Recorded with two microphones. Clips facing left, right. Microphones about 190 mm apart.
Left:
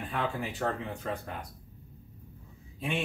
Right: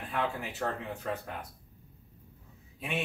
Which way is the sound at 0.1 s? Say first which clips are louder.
Even; centre (ahead or behind).